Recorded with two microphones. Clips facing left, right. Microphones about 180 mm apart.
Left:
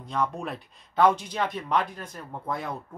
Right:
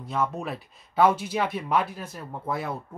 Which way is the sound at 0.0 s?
5° right (ahead or behind).